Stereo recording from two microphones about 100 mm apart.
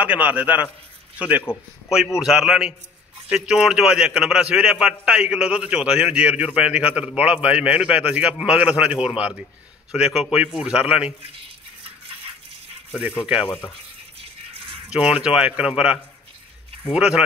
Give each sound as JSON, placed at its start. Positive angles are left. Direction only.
{"t": 0.0, "sound": "a man's voice", "side_deg": -15}
{"t": 1.5, "sound": "a man's voice", "side_deg": 20}
{"t": 2.1, "sound": "a man's voice", "side_deg": -5}
{"t": 13.2, "sound": "a man's voice", "side_deg": -10}
{"t": 14.9, "sound": "a man's voice", "side_deg": -10}